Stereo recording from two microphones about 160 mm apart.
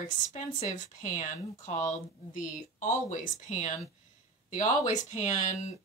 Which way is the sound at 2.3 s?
50° left (ahead or behind).